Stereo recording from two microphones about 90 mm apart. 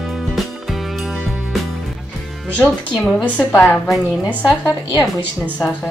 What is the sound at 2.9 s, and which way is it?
Speech, centre (ahead or behind).